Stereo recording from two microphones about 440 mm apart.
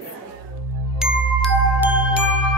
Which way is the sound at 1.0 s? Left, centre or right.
Centre.